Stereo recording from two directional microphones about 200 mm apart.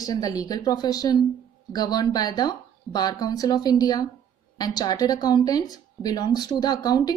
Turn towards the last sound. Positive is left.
turn(degrees=20)  # may be behind; listen again after turning